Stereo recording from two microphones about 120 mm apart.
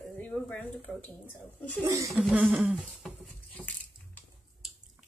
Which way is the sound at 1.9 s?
25° right (ahead or behind).